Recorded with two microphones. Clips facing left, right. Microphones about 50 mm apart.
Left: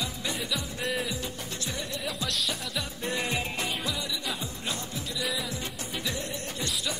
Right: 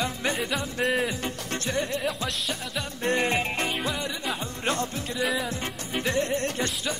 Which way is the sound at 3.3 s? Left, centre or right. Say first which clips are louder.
Right 5 dB; right.